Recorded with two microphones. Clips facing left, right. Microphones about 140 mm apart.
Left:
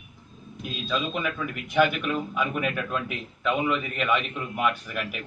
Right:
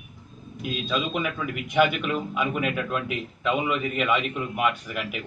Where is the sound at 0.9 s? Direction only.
15° right (ahead or behind).